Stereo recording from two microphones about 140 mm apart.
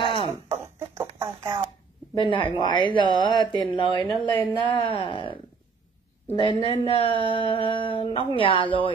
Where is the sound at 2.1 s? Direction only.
35° left (ahead or behind).